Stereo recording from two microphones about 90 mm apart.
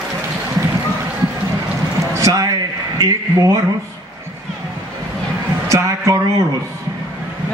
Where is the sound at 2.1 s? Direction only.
40° right (ahead or behind).